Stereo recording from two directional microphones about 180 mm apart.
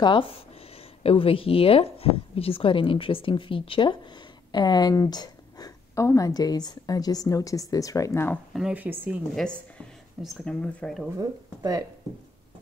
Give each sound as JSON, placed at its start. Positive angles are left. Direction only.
{"t": 0.0, "sound": "speech", "side_deg": 30}
{"t": 8.5, "sound": "speech", "side_deg": -5}
{"t": 11.1, "sound": "speech", "side_deg": -20}